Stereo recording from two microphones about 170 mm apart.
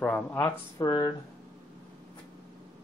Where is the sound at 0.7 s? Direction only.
25° left (ahead or behind).